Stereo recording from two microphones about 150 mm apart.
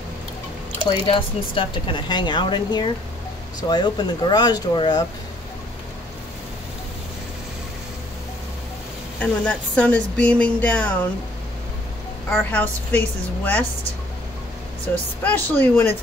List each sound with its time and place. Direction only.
0.8 s speech: 35° left (ahead or behind)
9.2 s speech: 10° left (ahead or behind)
12.3 s speech: 15° left (ahead or behind)
14.9 s speech: 10° left (ahead or behind)